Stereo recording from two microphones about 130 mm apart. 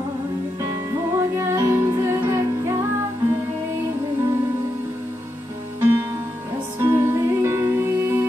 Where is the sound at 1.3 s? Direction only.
20° right (ahead or behind).